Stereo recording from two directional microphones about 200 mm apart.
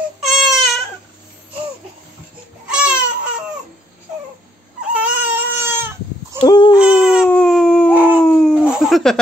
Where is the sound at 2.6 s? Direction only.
5° right (ahead or behind).